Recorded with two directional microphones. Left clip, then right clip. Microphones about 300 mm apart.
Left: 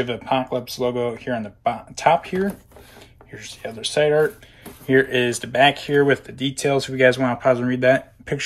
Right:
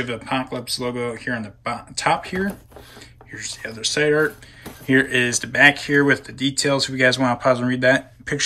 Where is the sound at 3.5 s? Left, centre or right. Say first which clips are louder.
Even; centre.